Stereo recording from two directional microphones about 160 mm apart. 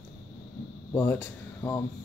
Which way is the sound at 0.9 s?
15° left (ahead or behind).